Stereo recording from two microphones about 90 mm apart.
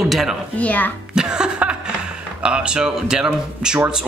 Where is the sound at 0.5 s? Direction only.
15° left (ahead or behind).